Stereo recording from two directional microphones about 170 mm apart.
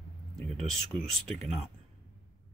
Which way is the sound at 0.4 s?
Centre (ahead or behind).